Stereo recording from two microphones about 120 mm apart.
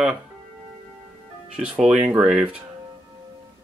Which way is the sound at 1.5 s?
10° right (ahead or behind).